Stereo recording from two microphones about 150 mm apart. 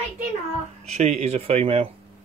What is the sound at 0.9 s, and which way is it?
Speech, 45° right (ahead or behind).